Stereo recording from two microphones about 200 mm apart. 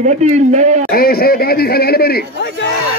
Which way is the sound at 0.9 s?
50° left (ahead or behind).